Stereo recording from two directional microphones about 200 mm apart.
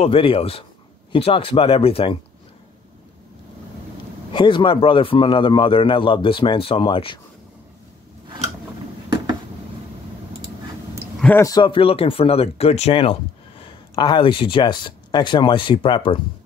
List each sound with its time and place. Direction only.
0.0 s speech: 25° left (ahead or behind)
4.3 s speech: 25° left (ahead or behind)
11.1 s speech: 10° left (ahead or behind); by 16.2 s 25° left (ahead or behind)